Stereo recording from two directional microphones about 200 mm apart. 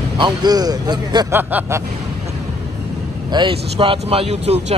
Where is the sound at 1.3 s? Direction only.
10° right (ahead or behind).